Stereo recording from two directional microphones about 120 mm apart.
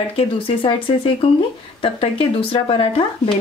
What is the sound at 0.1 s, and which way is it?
Speech, 50° left (ahead or behind).